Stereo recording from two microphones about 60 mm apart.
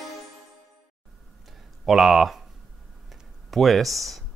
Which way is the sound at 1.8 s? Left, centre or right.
Centre.